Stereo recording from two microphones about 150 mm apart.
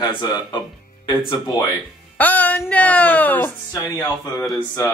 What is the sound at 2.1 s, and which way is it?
A woman's voice, 10° left (ahead or behind).